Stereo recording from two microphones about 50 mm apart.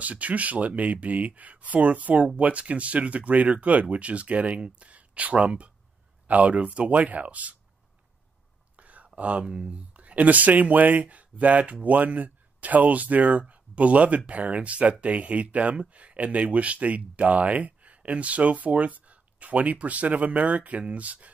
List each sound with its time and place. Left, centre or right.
0.0 s speech: right
8.7 s whispering: right
9.5 s speech: right